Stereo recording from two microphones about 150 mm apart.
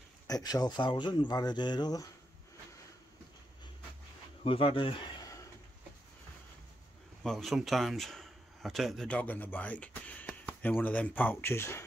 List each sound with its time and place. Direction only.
0.3 s speech: 25° left (ahead or behind)
4.5 s speech: 40° left (ahead or behind)
7.2 s a man's voice: centre (ahead or behind); by 11.8 s 15° left (ahead or behind)